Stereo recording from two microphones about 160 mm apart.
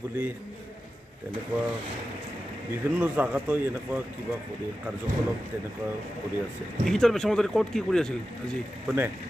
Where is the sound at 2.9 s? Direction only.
10° right (ahead or behind).